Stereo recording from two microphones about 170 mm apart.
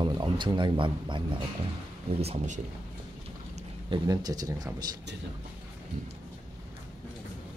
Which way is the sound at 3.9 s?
20° right (ahead or behind).